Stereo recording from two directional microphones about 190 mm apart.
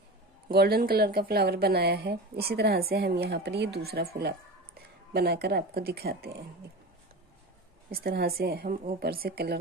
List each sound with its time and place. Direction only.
0.6 s speech: 55° right (ahead or behind)
7.9 s a woman's voice: 55° right (ahead or behind)